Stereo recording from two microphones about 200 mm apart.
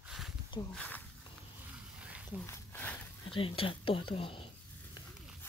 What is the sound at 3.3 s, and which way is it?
Speech, 25° left (ahead or behind).